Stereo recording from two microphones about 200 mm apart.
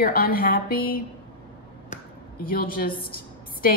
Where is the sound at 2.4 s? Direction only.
45° left (ahead or behind).